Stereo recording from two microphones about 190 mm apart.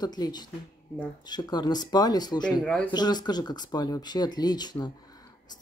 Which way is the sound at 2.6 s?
5° left (ahead or behind).